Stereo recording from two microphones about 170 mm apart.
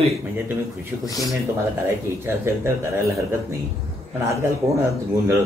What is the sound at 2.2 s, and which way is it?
Speech, 15° right (ahead or behind).